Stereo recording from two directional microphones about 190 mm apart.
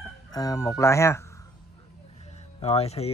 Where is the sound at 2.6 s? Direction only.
35° left (ahead or behind).